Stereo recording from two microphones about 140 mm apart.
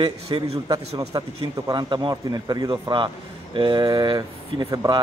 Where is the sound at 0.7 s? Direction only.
25° right (ahead or behind).